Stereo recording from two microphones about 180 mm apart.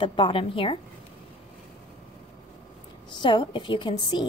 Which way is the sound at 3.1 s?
25° left (ahead or behind).